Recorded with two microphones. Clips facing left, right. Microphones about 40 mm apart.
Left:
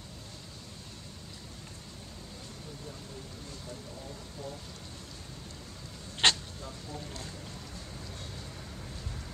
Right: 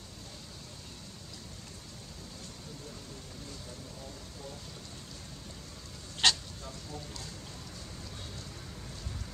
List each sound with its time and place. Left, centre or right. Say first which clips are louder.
6.2 s vehicle: left 2 dB; left
6.9 s speech: left 3 dB; centre